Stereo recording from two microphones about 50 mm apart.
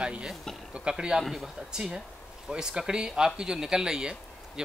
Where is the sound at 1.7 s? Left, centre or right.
Centre.